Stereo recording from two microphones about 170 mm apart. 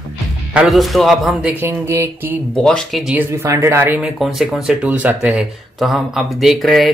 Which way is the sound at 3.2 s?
15° right (ahead or behind).